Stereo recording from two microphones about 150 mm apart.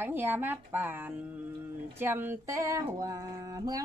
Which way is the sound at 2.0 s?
15° right (ahead or behind).